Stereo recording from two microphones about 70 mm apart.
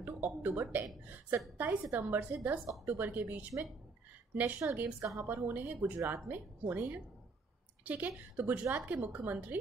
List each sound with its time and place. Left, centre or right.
0.0 s a woman's voice: right